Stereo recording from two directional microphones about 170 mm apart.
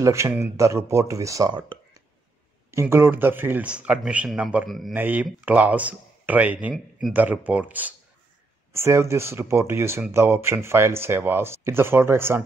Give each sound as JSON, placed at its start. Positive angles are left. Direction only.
{"t": 0.0, "sound": "speech", "side_deg": -15}
{"t": 2.7, "sound": "speech", "side_deg": -15}